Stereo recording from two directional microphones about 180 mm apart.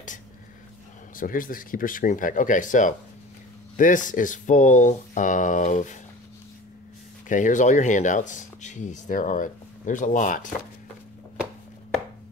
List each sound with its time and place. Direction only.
1.1 s speech: 50° left (ahead or behind)
7.2 s speech: 45° left (ahead or behind)